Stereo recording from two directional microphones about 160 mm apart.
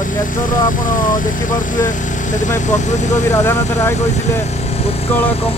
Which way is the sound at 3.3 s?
15° left (ahead or behind).